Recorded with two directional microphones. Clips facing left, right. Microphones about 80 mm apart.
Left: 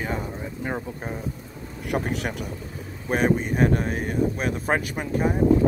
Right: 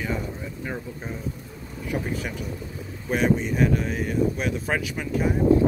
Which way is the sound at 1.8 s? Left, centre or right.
Left.